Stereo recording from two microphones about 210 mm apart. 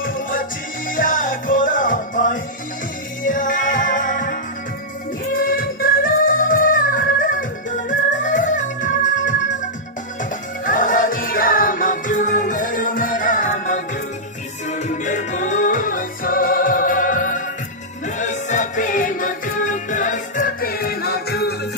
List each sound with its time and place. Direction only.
0.0 s music: 40° left (ahead or behind)
10.6 s music: 40° left (ahead or behind)